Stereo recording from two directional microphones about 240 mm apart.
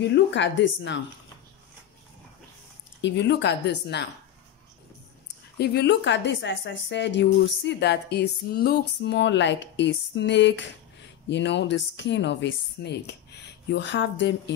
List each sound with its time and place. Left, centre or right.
0.0 s a woman's voice: left
3.0 s a woman's voice: left
5.6 s a woman's voice: left